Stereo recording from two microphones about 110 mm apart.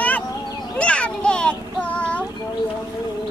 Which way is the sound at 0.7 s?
10° left (ahead or behind).